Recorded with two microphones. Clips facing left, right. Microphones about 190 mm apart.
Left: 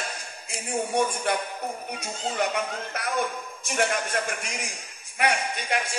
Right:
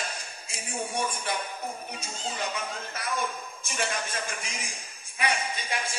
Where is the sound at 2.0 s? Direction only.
65° left (ahead or behind).